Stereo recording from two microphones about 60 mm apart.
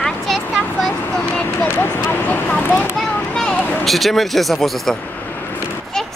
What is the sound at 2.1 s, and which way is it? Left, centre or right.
Speech, left.